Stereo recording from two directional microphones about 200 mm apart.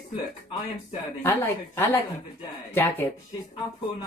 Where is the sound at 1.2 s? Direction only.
10° left (ahead or behind).